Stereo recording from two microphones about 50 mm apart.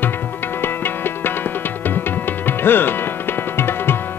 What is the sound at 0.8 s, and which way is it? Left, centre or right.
Music, left.